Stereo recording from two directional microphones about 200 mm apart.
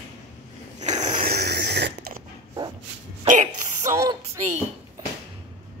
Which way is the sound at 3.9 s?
15° right (ahead or behind).